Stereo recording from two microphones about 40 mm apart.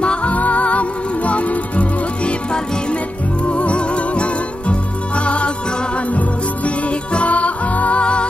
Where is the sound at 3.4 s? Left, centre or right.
Left.